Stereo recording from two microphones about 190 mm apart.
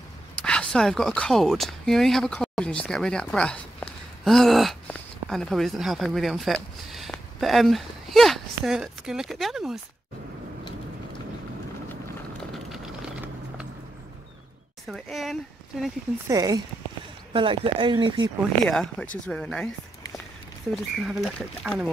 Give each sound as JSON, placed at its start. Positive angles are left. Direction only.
{"t": 0.4, "sound": "speech", "side_deg": 5}
{"t": 12.7, "sound": "a sound", "side_deg": -5}
{"t": 14.9, "sound": "speech", "side_deg": 0}
{"t": 16.3, "sound": "speech", "side_deg": -20}
{"t": 18.7, "sound": "speech", "side_deg": 5}
{"t": 20.7, "sound": "speech", "side_deg": 0}